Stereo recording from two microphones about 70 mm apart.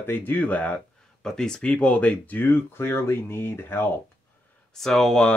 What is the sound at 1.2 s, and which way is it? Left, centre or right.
Speech, centre.